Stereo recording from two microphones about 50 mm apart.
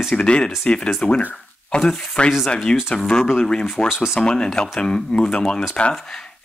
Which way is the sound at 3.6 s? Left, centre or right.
Centre.